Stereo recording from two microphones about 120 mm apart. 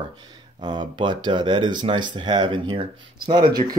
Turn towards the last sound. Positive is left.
turn(degrees=-35)  # may be behind; listen again after turning